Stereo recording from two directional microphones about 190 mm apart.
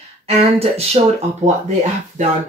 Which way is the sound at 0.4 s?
30° right (ahead or behind).